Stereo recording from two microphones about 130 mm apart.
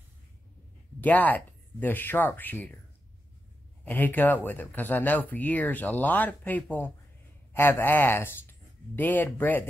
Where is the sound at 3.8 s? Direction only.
15° left (ahead or behind).